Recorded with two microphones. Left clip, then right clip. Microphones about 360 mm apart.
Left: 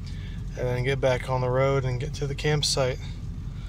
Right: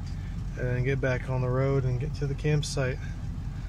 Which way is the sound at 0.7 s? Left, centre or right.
Centre.